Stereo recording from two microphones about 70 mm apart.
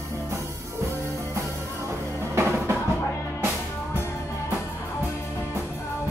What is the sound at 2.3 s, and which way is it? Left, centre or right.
Music, right.